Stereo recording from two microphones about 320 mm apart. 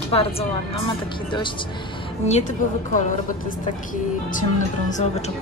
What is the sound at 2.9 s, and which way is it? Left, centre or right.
A woman's voice, left.